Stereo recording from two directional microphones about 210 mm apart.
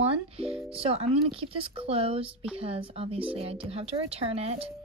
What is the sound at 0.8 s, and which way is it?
Speech, 25° right (ahead or behind).